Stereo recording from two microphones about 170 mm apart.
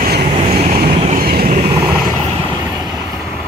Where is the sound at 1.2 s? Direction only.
60° right (ahead or behind).